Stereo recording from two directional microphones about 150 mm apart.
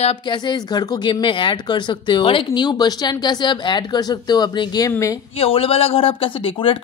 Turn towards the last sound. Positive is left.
turn(degrees=35)  # may be behind; listen again after turning